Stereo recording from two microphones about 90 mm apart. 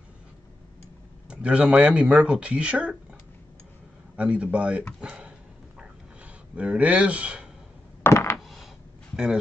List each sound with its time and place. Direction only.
1.3 s speech: 15° right (ahead or behind)
4.2 s speech: 15° right (ahead or behind)
5.8 s a sound: 15° right (ahead or behind)
8.0 s coin: 30° left (ahead or behind)
8.4 s a sound: centre (ahead or behind)
9.1 s speech: 10° right (ahead or behind)